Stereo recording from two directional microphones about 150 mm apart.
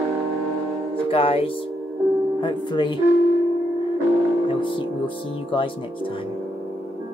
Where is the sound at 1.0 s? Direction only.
40° left (ahead or behind).